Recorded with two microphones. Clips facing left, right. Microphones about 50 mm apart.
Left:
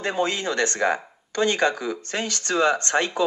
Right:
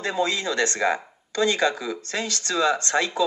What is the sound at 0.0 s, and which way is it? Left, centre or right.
Speech, left.